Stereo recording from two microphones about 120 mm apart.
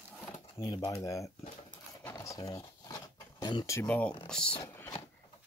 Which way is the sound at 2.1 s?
30° left (ahead or behind).